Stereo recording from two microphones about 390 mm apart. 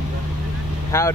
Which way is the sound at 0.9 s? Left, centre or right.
Centre.